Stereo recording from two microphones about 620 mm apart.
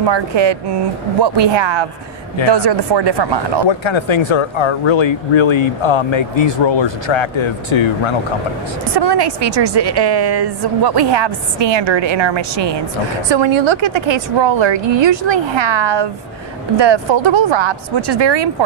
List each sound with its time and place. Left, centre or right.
0.0 s a woman's voice: right
3.6 s speech: left
8.9 s a woman's voice: right